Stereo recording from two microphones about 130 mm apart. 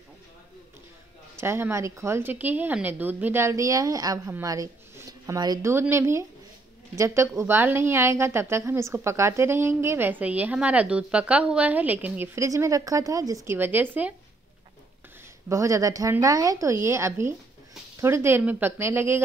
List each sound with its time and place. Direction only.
1.3 s a woman's voice: 20° right (ahead or behind)
12.4 s a woman's voice: 25° right (ahead or behind)
15.4 s a woman's voice: 25° right (ahead or behind)